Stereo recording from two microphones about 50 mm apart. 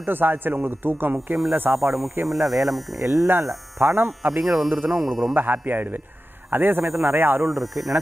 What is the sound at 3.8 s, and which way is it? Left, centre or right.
Speech, right.